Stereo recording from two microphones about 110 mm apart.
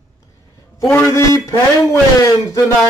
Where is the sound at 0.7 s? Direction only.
25° left (ahead or behind).